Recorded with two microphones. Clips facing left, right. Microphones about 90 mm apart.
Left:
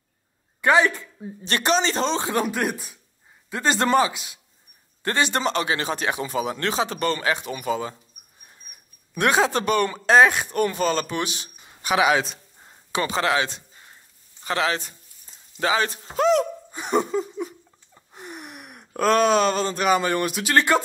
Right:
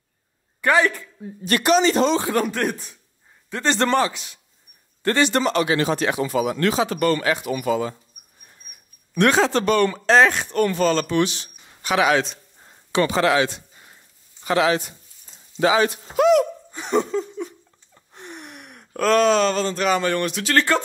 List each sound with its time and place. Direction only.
0.6 s speech: 20° left (ahead or behind)
2.4 s a man's voice: 10° left (ahead or behind); by 7.9 s 25° left (ahead or behind)
9.1 s speech: 15° left (ahead or behind)
13.0 s speech: 25° left (ahead or behind)
14.4 s a sound: 30° right (ahead or behind)
14.7 s speech: 40° left (ahead or behind)
16.7 s a sound: 10° left (ahead or behind)